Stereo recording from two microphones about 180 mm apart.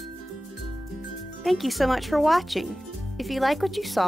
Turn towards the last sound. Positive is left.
turn(degrees=0)  # may be behind; listen again after turning